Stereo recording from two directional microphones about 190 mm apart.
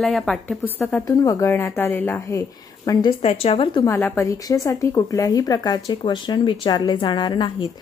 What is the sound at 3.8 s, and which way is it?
A woman's voice, 10° left (ahead or behind).